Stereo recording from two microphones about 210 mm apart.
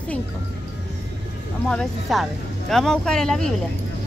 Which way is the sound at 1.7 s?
Centre (ahead or behind).